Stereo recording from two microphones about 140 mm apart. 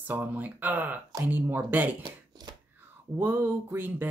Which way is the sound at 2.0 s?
30° right (ahead or behind).